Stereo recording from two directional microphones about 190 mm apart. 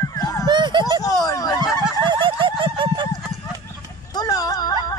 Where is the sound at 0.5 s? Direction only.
25° right (ahead or behind).